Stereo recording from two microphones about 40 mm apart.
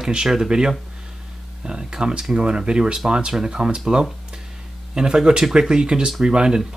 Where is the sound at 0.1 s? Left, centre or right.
Centre.